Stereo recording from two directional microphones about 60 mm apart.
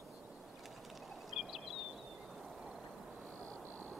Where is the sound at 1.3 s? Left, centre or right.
Centre.